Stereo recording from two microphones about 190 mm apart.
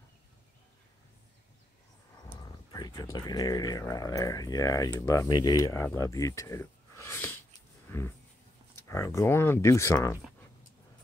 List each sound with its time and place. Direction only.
2.4 s speech: 20° left (ahead or behind)
8.8 s speech: 15° left (ahead or behind)